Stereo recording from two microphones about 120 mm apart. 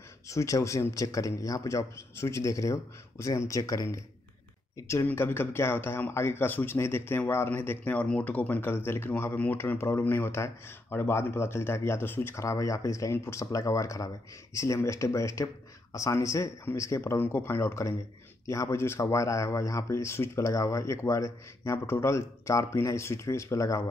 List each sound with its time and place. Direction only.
0.3 s speech: 25° left (ahead or behind)